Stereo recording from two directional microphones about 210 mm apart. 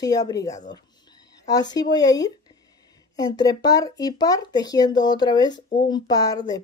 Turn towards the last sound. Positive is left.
turn(degrees=15)  # may be behind; listen again after turning